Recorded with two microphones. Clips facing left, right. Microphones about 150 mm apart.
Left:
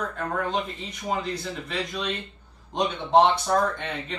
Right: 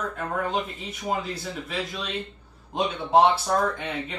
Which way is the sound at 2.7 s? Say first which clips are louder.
Even; 5° right (ahead or behind).